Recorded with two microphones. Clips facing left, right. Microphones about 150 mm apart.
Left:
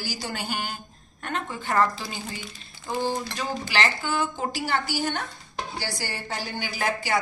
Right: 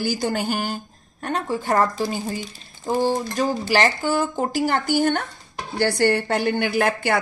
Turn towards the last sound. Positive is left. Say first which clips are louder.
# right 7 dB
turn(degrees=-60)  # may be behind; listen again after turning